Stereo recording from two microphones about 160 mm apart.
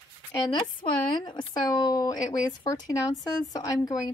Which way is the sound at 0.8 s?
30° left (ahead or behind).